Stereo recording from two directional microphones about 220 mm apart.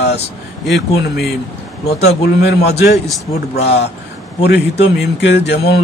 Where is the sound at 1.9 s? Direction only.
30° left (ahead or behind).